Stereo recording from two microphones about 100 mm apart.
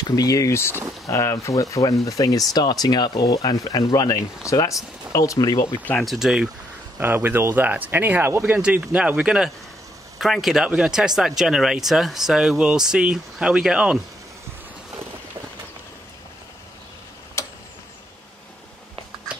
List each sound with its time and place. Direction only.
0.1 s speech: 35° left (ahead or behind)
6.0 s speech: 5° right (ahead or behind)
7.0 s speech: 20° right (ahead or behind)
8.5 s speech: 15° right (ahead or behind)
17.4 s tick-tock: 30° left (ahead or behind)